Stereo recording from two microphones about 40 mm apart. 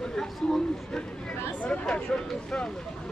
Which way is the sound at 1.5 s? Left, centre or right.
Left.